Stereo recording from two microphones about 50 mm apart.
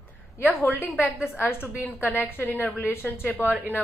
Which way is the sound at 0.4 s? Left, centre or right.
Left.